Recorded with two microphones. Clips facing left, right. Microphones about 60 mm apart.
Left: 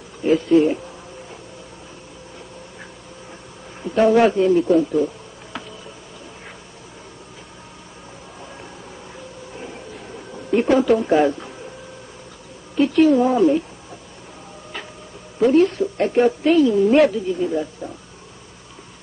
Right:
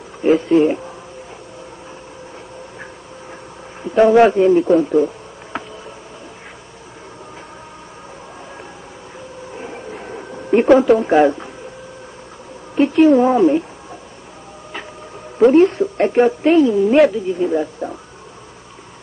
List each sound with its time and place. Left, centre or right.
0.2 s speech: right
3.8 s speech: right
9.6 s a sound: right
10.5 s speech: right
12.7 s speech: right
15.3 s a woman's voice: right
16.7 s speech: centre
17.3 s speech: right